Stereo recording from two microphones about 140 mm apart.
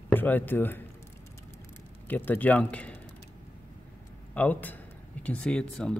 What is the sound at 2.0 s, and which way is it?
Speech, 15° left (ahead or behind).